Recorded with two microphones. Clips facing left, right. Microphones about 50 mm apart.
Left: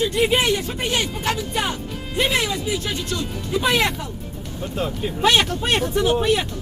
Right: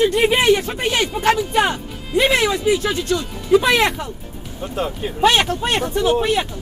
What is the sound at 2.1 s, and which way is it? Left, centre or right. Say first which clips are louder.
Speech: right 5 dB; right.